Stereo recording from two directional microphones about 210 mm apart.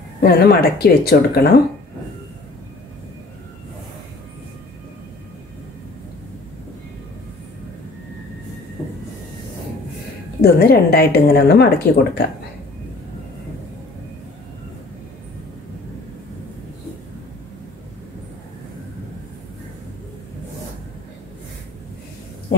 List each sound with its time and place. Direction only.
0.2 s speech: 45° left (ahead or behind)
10.4 s speech: 45° left (ahead or behind)